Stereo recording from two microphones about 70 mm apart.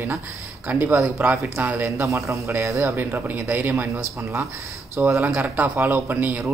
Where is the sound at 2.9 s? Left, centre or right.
Right.